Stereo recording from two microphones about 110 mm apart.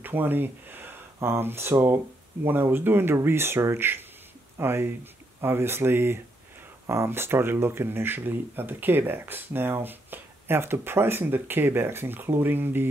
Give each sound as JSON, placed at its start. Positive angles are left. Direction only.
{"t": 0.0, "sound": "speech", "side_deg": -15}